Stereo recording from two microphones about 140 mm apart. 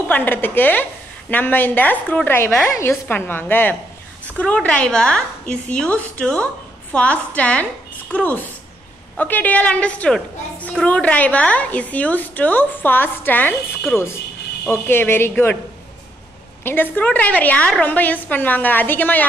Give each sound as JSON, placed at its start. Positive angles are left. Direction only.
{"t": 0.1, "sound": "a woman's voice", "side_deg": 15}
{"t": 4.6, "sound": "a woman's voice", "side_deg": 5}
{"t": 14.7, "sound": "a woman's voice", "side_deg": 15}
{"t": 16.6, "sound": "a woman's voice", "side_deg": 15}